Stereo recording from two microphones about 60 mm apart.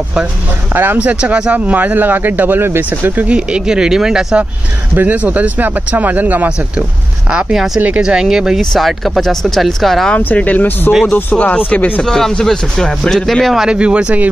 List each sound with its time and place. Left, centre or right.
0.9 s speech: right
3.3 s speech: centre
4.9 s speech: right
7.5 s speech: centre
8.5 s speech: centre
10.1 s speech: left
12.0 s speech: centre
13.6 s speech: centre